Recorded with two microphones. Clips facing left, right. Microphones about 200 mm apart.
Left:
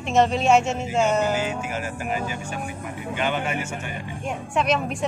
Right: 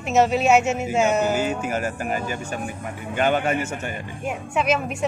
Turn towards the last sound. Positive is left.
turn(degrees=-5)  # may be behind; listen again after turning